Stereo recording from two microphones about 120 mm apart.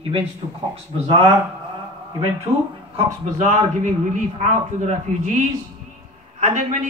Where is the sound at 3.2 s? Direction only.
85° right.